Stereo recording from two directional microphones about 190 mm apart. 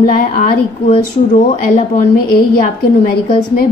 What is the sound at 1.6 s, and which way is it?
Speech, 50° left (ahead or behind).